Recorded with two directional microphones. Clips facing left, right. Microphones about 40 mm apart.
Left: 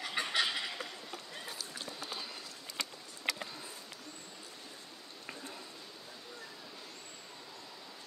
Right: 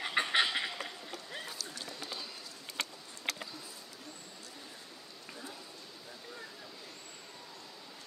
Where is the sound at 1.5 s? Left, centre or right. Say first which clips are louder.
Even; centre.